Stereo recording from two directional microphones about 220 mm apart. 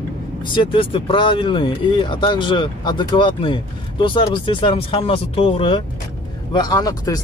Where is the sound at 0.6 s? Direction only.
25° left (ahead or behind).